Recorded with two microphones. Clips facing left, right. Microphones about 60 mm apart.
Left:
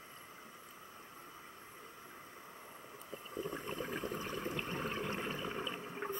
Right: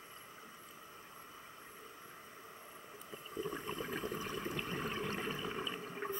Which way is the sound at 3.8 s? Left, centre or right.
Left.